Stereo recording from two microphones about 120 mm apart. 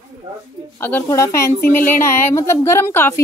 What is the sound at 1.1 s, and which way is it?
Speech, 25° left (ahead or behind).